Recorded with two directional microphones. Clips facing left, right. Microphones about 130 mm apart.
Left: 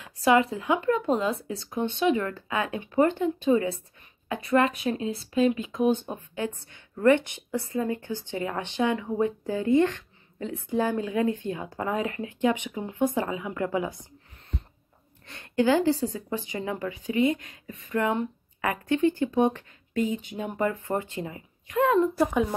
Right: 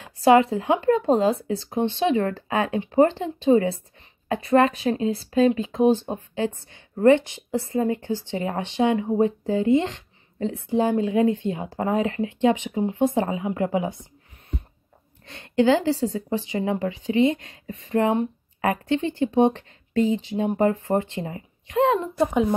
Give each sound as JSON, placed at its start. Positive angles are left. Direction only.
{"t": 0.0, "sound": "speech", "side_deg": -30}
{"t": 7.5, "sound": "speech", "side_deg": -35}
{"t": 7.9, "sound": "speech", "side_deg": -20}
{"t": 15.2, "sound": "a woman's voice", "side_deg": -20}
{"t": 20.7, "sound": "speech", "side_deg": -45}
{"t": 21.0, "sound": "a woman's voice", "side_deg": -30}